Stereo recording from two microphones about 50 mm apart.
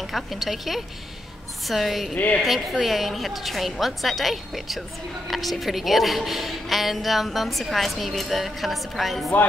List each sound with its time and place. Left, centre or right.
0.0 s a woman's voice: centre
2.1 s speech: left
2.4 s a woman's voice: centre